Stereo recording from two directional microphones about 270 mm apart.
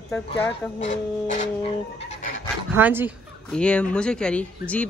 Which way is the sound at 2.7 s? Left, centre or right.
Centre.